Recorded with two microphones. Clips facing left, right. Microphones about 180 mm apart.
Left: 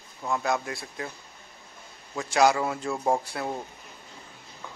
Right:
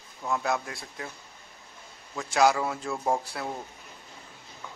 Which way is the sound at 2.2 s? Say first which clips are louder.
Left 1 dB; centre (ahead or behind).